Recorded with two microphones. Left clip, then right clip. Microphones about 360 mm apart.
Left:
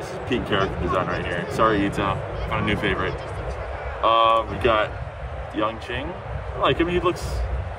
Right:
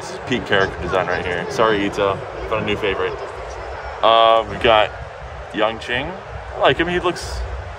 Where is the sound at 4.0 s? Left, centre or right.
Right.